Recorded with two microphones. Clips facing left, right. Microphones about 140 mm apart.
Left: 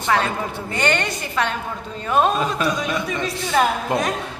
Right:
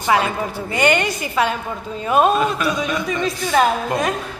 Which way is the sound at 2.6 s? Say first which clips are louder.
Right 1 dB; centre (ahead or behind).